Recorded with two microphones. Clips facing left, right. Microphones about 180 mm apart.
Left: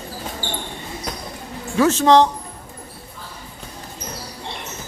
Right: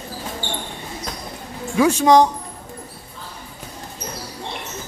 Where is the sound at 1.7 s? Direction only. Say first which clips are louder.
Even; 10° right (ahead or behind).